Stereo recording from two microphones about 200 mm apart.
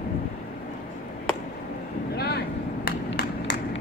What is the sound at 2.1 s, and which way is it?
Vehicle, 50° left (ahead or behind).